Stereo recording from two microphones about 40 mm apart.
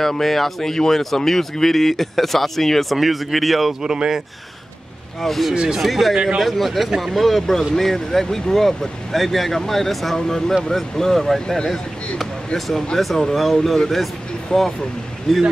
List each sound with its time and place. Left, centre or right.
0.0 s speech: centre
3.8 s speech: centre
5.2 s speech: centre
5.5 s speech: centre
5.8 s speech: centre
12.5 s speech: centre
14.5 s speech: left
15.3 s speech: centre